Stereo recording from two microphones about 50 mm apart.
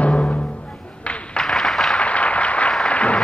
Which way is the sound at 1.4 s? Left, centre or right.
Centre.